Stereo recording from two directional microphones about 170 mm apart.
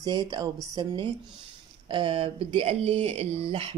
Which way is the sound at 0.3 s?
25° right (ahead or behind).